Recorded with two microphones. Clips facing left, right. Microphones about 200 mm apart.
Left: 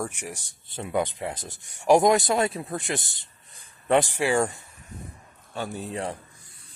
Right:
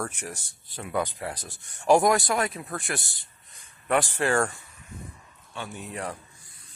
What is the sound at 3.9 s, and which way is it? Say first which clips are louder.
Speech: left 2 dB; 15° left (ahead or behind).